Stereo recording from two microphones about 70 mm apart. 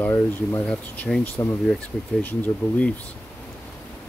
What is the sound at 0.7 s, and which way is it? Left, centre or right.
Speech, centre.